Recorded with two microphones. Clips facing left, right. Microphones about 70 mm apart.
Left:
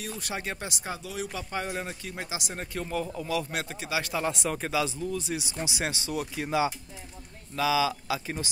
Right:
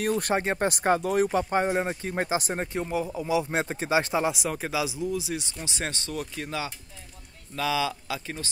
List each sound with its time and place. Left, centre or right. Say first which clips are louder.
0.0 s speech: right 11 dB; right
0.4 s speech: right 8 dB; right
0.7 s speech: right 12 dB; right
2.8 s speech: right 3 dB; centre; by 4.2 s right
4.2 s speech: right 2 dB; centre
5.7 s speech: right 1 dB; centre